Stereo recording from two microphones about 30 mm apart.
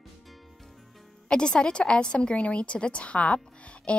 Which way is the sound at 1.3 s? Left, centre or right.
Left.